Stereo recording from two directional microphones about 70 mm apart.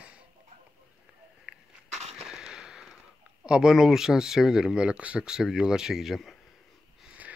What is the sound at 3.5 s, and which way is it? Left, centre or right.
Speech, centre.